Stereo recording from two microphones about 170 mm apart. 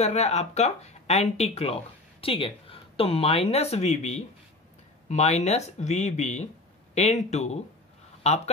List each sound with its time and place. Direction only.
0.0 s speech: 40° left (ahead or behind)